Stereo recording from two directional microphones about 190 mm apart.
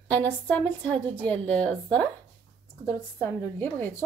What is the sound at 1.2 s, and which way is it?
Speech, 5° left (ahead or behind).